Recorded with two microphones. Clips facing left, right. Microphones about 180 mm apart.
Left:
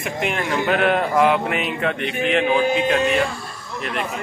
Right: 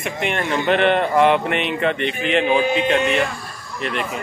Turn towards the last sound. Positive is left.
turn(degrees=0)  # may be behind; listen again after turning